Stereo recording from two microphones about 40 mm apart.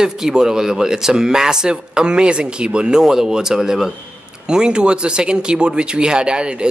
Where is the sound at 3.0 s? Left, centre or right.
Centre.